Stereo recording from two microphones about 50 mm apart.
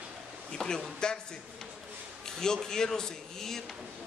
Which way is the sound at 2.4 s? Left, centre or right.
Centre.